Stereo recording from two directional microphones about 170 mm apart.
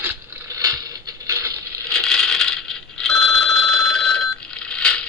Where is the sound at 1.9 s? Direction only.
5° left (ahead or behind).